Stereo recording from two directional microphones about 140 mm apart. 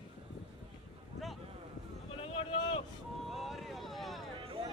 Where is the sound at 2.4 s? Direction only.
40° left (ahead or behind).